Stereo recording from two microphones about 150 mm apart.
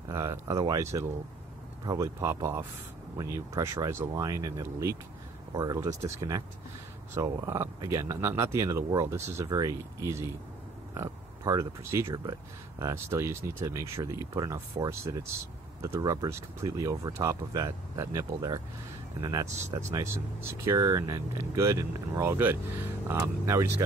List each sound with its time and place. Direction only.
0.1 s speech: 20° right (ahead or behind)
19.9 s speech: 15° right (ahead or behind)